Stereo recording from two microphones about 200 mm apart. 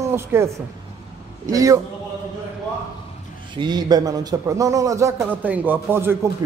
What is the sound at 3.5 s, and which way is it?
A man's voice, 20° right (ahead or behind).